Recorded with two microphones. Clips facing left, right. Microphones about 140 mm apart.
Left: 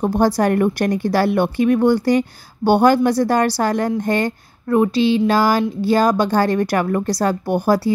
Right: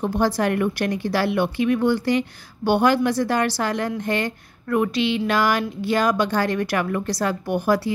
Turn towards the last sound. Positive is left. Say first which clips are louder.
# left 4 dB
turn(degrees=35)  # may be behind; listen again after turning